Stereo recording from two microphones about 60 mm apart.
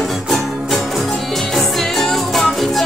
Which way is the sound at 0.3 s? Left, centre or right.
Centre.